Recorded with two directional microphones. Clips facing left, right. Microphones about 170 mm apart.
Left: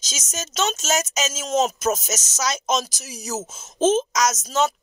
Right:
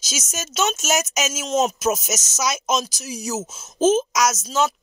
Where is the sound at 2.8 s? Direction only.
Centre (ahead or behind).